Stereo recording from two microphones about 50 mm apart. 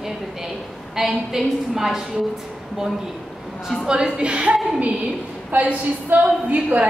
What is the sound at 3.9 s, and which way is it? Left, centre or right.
Speech, centre.